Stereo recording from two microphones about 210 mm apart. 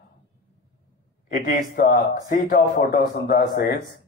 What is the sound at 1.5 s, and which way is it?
Speech, 40° left (ahead or behind).